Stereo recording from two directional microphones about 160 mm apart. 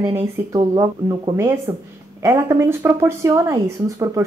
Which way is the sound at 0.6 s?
25° right (ahead or behind).